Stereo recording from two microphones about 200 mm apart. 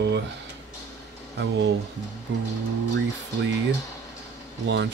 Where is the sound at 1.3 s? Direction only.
60° right (ahead or behind).